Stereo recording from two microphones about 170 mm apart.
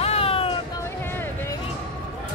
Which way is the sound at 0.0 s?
35° left (ahead or behind).